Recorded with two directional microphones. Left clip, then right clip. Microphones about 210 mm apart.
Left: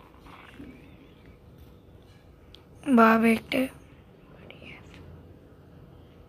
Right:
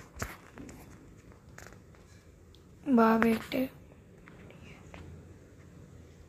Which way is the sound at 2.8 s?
15° left (ahead or behind).